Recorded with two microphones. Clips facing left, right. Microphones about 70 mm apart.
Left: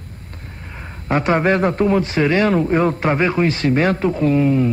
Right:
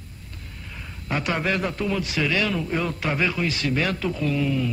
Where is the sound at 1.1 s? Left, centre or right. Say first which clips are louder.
Left 9 dB; left.